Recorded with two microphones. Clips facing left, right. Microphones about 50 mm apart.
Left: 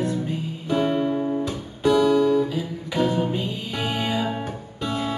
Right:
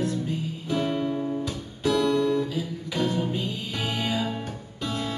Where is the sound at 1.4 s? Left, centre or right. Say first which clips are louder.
Left 5 dB; centre.